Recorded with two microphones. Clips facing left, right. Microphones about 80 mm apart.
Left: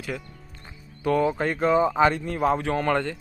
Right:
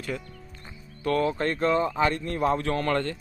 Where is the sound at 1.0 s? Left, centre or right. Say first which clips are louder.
Left 2 dB; centre.